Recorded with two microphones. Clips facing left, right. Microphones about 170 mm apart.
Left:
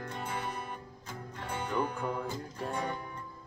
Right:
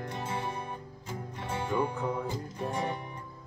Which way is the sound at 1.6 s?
15° right (ahead or behind).